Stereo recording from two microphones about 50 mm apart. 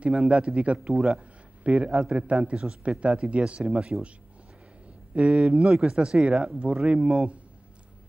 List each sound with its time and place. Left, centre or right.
0.0 s a man's voice: right
5.1 s a man's voice: right